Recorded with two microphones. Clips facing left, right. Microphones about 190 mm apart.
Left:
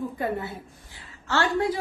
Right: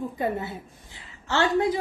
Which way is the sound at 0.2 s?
20° right (ahead or behind).